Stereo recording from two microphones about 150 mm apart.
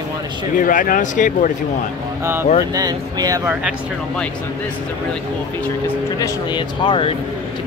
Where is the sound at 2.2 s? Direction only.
15° right (ahead or behind).